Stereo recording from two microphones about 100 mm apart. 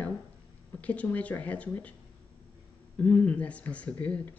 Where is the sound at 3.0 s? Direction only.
15° left (ahead or behind).